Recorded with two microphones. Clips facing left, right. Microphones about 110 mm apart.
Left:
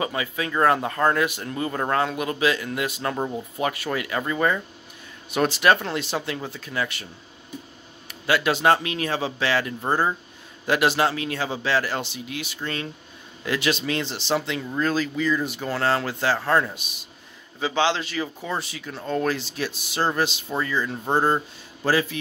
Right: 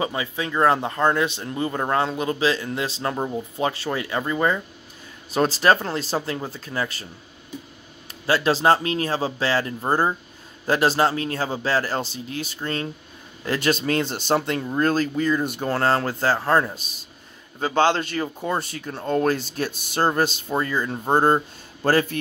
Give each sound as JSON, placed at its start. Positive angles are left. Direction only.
{"t": 0.0, "sound": "a man's voice", "side_deg": -25}
{"t": 5.3, "sound": "speech", "side_deg": -35}
{"t": 8.1, "sound": "speech", "side_deg": -35}
{"t": 9.8, "sound": "speech", "side_deg": -15}
{"t": 10.7, "sound": "speech", "side_deg": -35}
{"t": 13.5, "sound": "speech", "side_deg": -45}
{"t": 16.3, "sound": "a man's voice", "side_deg": -25}
{"t": 17.6, "sound": "speech", "side_deg": -45}
{"t": 21.0, "sound": "a man's voice", "side_deg": -20}
{"t": 21.8, "sound": "speech", "side_deg": -50}